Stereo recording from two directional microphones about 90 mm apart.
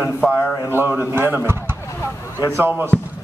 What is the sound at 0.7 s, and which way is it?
A man's voice, 25° right (ahead or behind).